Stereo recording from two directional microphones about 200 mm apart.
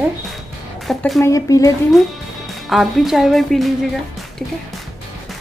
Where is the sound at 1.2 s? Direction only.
15° left (ahead or behind).